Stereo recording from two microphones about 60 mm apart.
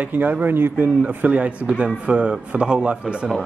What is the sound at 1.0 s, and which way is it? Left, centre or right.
Speech, right.